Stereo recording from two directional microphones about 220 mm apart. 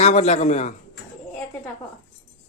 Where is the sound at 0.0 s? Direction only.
30° left (ahead or behind).